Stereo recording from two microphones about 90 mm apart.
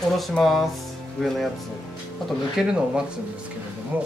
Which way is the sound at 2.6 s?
5° right (ahead or behind).